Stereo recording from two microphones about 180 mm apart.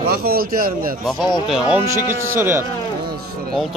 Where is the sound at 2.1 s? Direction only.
15° right (ahead or behind).